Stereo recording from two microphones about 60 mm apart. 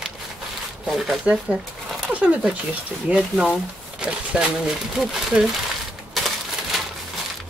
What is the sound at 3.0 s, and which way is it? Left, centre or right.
Speech, centre.